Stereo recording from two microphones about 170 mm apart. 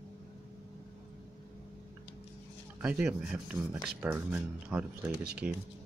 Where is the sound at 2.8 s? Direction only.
10° right (ahead or behind).